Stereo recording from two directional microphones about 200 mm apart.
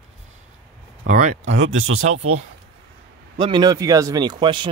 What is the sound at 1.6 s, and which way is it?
Speech, 90° right.